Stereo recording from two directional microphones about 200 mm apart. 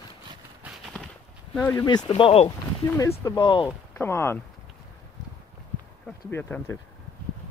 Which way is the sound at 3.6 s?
10° left (ahead or behind).